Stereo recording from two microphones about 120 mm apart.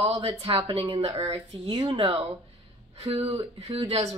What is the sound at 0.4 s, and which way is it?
Speech, 50° right (ahead or behind).